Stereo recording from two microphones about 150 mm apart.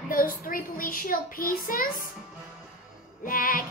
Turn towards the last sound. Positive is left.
turn(degrees=65)  # may be behind; listen again after turning